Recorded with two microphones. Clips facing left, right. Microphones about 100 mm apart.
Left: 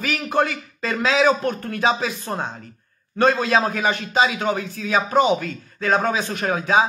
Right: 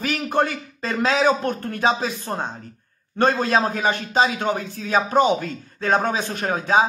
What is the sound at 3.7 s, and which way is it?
Music, 30° right (ahead or behind).